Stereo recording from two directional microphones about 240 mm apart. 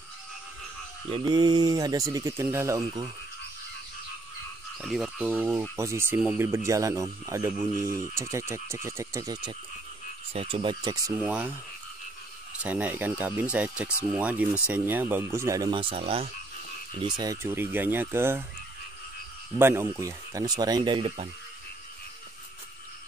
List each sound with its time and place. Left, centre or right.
1.1 s speech: centre
4.8 s speech: centre
12.5 s speech: centre
19.6 s speech: centre